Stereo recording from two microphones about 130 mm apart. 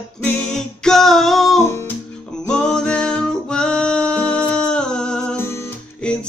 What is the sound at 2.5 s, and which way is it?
Music, 5° left (ahead or behind).